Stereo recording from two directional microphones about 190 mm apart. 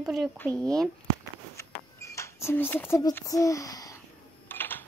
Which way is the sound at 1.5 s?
15° left (ahead or behind).